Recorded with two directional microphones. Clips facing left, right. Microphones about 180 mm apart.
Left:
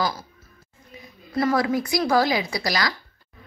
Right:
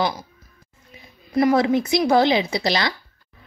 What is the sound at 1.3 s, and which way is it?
A woman's voice, 20° right (ahead or behind).